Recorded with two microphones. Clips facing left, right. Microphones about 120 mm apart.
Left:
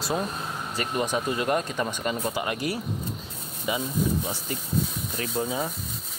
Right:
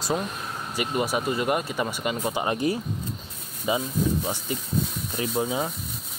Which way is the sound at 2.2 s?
20° right (ahead or behind).